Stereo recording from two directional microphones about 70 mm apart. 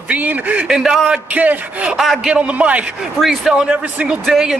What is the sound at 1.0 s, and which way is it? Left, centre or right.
A man's voice, centre.